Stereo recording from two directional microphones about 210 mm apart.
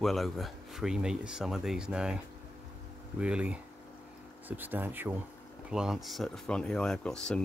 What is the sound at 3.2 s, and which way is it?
Speech, 5° right (ahead or behind).